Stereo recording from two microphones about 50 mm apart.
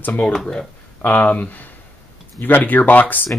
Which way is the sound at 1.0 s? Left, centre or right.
Left.